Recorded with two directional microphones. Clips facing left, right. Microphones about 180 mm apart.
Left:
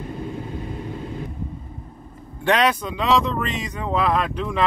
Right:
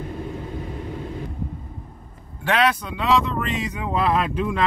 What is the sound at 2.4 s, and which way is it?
Speech, 5° right (ahead or behind).